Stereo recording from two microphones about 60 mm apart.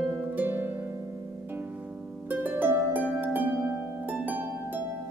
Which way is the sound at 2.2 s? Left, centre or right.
Right.